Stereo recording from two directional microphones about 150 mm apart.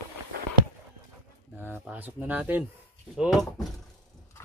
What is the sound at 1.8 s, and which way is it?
Speech, 10° right (ahead or behind).